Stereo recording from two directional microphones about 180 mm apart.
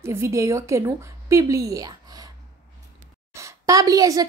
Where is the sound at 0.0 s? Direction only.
15° right (ahead or behind).